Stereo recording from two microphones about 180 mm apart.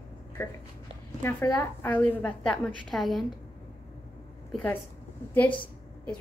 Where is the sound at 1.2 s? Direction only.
15° left (ahead or behind).